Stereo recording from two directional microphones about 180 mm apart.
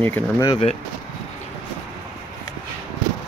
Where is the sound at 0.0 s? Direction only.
10° left (ahead or behind).